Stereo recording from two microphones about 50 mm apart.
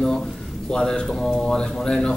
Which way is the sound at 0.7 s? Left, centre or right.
Centre.